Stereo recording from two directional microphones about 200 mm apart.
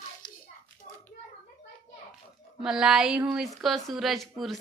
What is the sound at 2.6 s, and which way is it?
Speech, 5° right (ahead or behind).